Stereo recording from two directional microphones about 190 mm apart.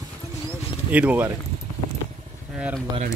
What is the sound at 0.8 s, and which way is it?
Speech, 10° right (ahead or behind).